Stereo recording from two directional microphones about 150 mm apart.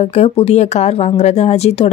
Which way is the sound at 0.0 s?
45° left (ahead or behind).